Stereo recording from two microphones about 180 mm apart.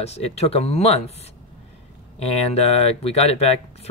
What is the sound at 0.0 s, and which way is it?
Speech, 35° left (ahead or behind).